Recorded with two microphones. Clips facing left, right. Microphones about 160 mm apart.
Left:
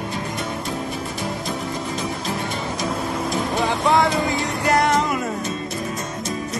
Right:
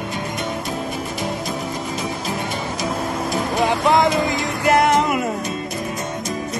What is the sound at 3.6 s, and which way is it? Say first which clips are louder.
Music: right 2 dB; 20° right (ahead or behind).